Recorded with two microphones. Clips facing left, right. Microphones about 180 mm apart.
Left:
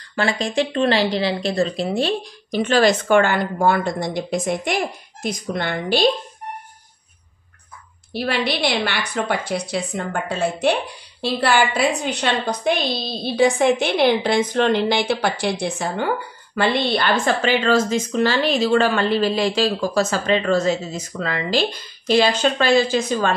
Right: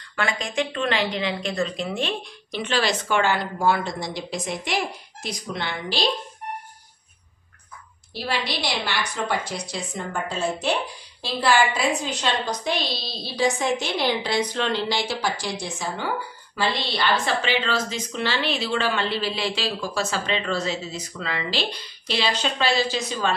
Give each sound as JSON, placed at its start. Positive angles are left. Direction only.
{"t": 0.1, "sound": "a woman's voice", "side_deg": 35}
{"t": 8.1, "sound": "a woman's voice", "side_deg": 60}